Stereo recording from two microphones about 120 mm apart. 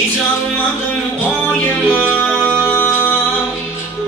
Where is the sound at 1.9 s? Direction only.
15° left (ahead or behind).